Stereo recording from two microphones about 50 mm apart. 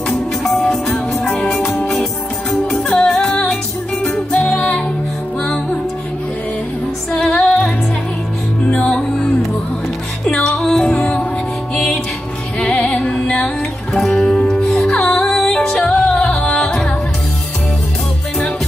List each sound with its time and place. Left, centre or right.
0.4 s music: centre
2.9 s music: centre
4.3 s music: left
7.2 s music: left
8.8 s music: centre
12.5 s music: centre
15.6 s music: left